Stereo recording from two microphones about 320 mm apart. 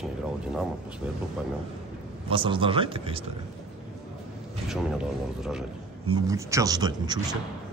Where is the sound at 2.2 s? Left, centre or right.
Centre.